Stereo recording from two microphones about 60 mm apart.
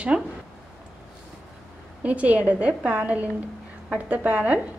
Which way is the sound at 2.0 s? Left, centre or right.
Right.